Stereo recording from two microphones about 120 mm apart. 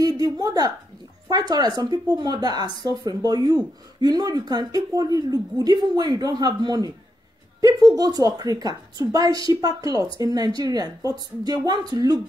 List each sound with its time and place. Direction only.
0.0 s a woman's voice: 30° right (ahead or behind)